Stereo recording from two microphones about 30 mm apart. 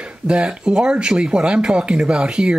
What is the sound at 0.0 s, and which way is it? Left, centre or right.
Speech, right.